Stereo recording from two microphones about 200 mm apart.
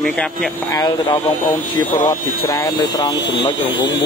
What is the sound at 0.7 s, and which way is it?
Speech, 20° left (ahead or behind).